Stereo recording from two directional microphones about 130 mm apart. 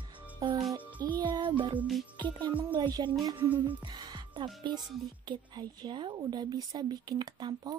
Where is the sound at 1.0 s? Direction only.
35° right (ahead or behind).